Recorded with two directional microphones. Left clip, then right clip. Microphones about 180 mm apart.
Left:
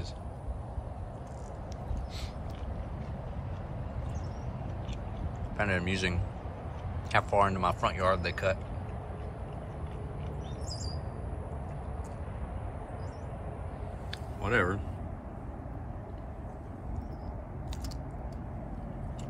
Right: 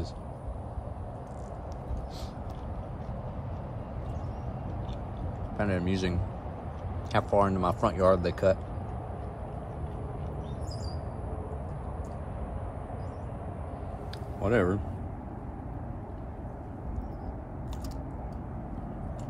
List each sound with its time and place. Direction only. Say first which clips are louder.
5.6 s speech: even; 5° right (ahead or behind)
14.4 s speech: right 2 dB; 15° right (ahead or behind)